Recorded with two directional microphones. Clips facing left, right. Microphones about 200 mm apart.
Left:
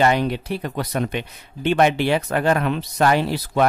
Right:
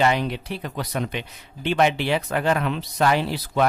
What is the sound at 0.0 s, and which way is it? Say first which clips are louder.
Speech: left 3 dB; 50° left (ahead or behind).